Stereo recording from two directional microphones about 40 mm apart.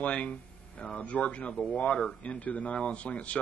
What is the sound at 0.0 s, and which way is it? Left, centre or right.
Speech, left.